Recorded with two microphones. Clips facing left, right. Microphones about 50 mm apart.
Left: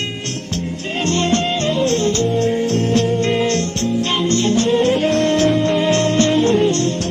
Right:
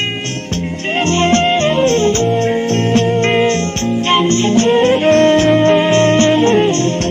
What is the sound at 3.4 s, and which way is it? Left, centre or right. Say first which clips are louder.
Music: right 4 dB; right.